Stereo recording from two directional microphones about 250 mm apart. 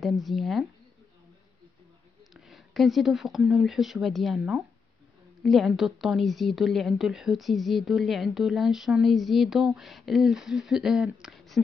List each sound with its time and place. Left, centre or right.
0.0 s speech: centre
2.4 s speech: centre